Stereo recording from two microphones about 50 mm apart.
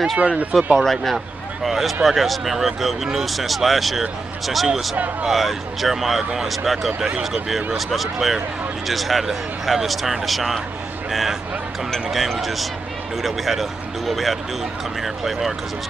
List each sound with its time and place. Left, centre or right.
0.2 s speech: right
0.7 s speech: centre